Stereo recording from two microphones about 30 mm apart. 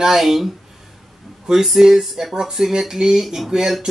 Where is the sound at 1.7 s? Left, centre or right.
Centre.